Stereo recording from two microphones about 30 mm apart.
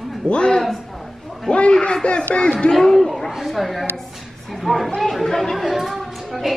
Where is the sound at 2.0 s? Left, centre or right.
Left.